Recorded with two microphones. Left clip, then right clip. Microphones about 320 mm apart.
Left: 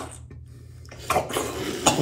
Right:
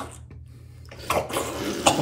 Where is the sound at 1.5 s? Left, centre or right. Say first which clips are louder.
Right 1 dB; centre.